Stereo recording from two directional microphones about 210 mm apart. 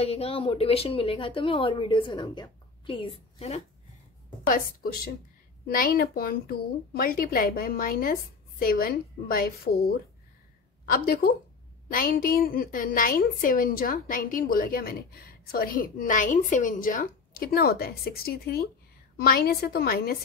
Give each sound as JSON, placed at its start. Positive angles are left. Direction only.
{"t": 0.0, "sound": "a woman's voice", "side_deg": 30}
{"t": 4.5, "sound": "a woman's voice", "side_deg": 45}